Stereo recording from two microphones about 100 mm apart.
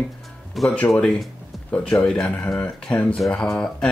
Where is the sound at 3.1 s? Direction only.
5° left (ahead or behind).